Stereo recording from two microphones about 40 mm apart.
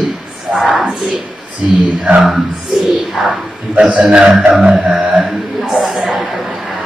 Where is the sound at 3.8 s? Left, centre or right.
Right.